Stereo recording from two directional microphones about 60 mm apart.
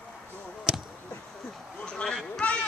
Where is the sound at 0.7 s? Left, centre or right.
Centre.